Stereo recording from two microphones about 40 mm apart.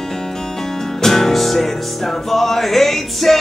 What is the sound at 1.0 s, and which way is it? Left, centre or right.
Music, centre.